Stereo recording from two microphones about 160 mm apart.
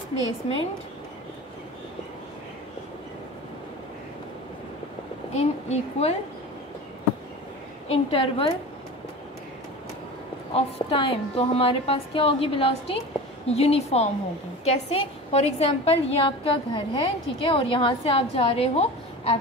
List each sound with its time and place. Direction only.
5.3 s a woman's voice: 40° left (ahead or behind)
7.9 s a woman's voice: 35° left (ahead or behind)
10.5 s a woman's voice: 35° left (ahead or behind)